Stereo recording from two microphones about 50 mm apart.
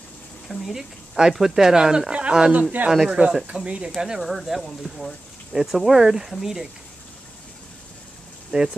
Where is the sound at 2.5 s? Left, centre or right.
Right.